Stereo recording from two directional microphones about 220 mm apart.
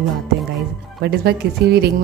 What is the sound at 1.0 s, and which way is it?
Speech, 45° right (ahead or behind).